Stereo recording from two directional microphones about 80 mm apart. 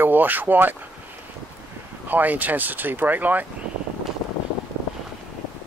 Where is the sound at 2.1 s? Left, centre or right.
Right.